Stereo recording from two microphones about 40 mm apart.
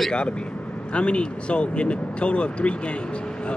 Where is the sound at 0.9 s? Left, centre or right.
Left.